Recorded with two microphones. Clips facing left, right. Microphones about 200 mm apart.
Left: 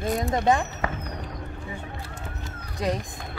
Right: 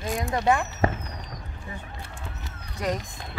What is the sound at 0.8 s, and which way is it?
Fireworks, 30° right (ahead or behind).